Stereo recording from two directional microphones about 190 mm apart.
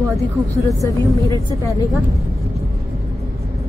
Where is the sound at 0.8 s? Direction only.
15° left (ahead or behind).